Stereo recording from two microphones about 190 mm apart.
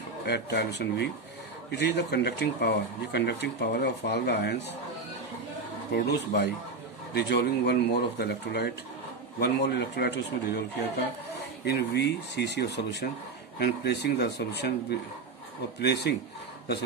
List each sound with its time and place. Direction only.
0.2 s speech: 60° left (ahead or behind)
5.9 s speech: 60° left (ahead or behind)